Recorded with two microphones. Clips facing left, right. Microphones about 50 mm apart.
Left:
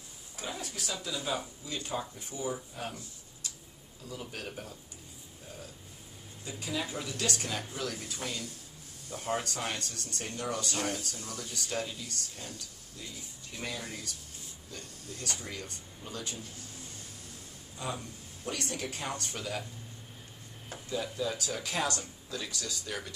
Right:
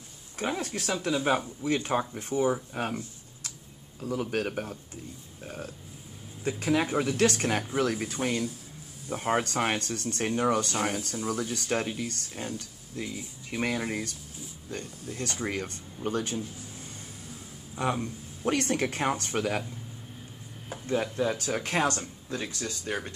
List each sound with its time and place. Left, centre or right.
0.4 s speech: right
4.0 s speech: right
6.4 s speech: right
17.9 s speech: right
20.8 s speech: right